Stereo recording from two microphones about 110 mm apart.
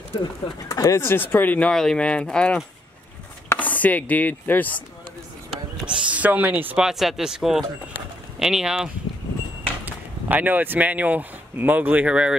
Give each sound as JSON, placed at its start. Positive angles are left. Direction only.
{"t": 0.2, "sound": "speech", "side_deg": 30}
{"t": 5.5, "sound": "speech", "side_deg": -10}
{"t": 6.8, "sound": "speech", "side_deg": -5}
{"t": 7.9, "sound": "clip-clop", "side_deg": -5}
{"t": 9.8, "sound": "speech", "side_deg": -15}